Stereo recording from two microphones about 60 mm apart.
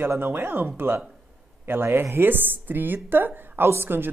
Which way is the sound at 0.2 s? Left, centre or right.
Right.